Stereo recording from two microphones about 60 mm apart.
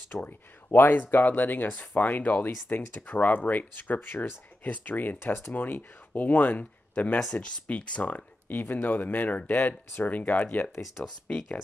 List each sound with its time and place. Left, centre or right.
0.1 s speech: left
10.4 s speech: left
11.2 s speech: centre